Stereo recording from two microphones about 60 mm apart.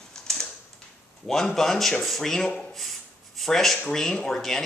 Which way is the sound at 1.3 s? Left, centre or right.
Centre.